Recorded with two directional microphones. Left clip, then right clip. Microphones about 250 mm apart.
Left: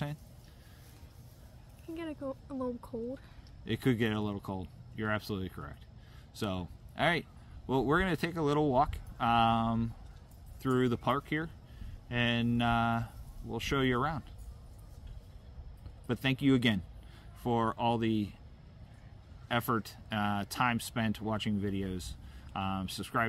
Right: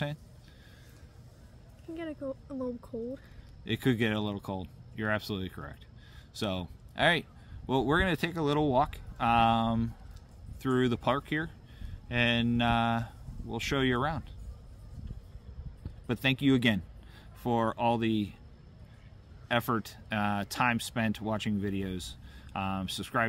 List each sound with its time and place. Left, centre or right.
2.0 s speech: centre
3.6 s speech: centre
16.1 s speech: centre
19.4 s speech: centre